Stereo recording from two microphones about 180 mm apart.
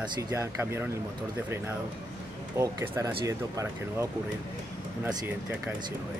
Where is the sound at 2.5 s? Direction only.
15° right (ahead or behind).